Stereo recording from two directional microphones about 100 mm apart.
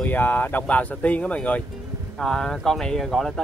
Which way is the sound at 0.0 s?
20° left (ahead or behind).